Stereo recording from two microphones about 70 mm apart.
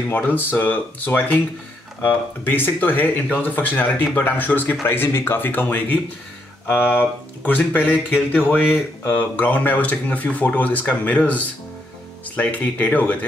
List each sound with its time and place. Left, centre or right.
0.1 s speech: left